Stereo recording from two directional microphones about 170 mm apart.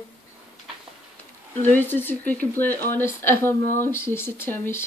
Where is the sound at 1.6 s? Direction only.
10° left (ahead or behind).